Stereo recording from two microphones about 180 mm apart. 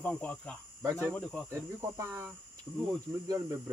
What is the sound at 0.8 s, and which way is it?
Cricket, 15° right (ahead or behind).